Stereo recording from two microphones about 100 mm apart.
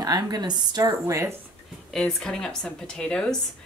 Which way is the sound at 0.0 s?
40° right (ahead or behind).